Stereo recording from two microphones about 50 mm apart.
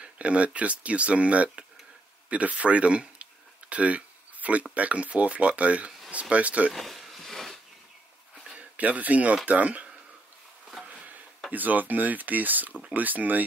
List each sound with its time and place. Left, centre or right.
0.0 s speech: right
2.2 s a sound: right
4.7 s speech: right
6.7 s a sound: centre
8.5 s speech: right
11.5 s speech: right